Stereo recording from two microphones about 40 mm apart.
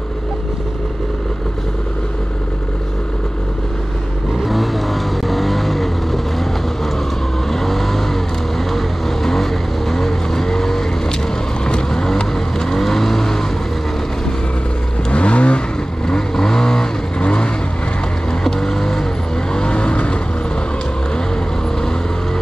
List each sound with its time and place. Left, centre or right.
4.4 s vehicle: centre
15.0 s vehicle: left
16.1 s vehicle: centre
17.2 s vehicle: left
18.4 s vehicle: centre
19.5 s vehicle: left